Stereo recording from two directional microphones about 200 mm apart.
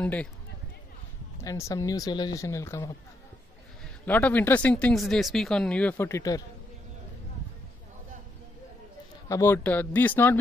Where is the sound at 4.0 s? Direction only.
10° left (ahead or behind).